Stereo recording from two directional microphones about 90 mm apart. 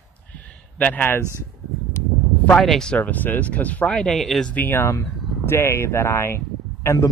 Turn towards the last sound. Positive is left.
turn(degrees=30)  # may be behind; listen again after turning